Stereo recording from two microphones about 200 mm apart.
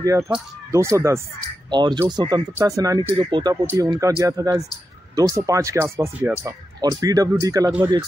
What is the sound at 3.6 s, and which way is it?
Speech, 10° right (ahead or behind).